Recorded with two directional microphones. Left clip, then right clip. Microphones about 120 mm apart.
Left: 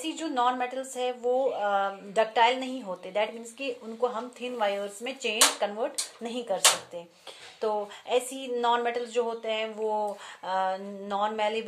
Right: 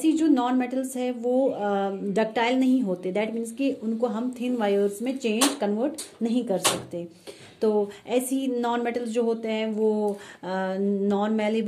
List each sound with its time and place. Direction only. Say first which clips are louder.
0.0 s a woman's voice: right 5 dB; 15° right (ahead or behind)
7.6 s a woman's voice: right 5 dB; 20° right (ahead or behind)